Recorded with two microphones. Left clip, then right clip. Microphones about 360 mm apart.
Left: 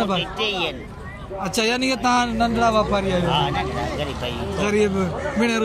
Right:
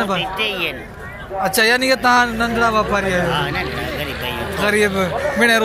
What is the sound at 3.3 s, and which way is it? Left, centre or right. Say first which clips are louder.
Speech: right 1 dB; left.